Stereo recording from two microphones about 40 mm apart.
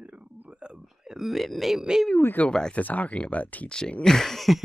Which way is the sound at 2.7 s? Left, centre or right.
Left.